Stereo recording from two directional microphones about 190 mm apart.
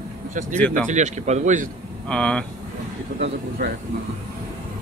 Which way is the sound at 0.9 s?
40° right (ahead or behind).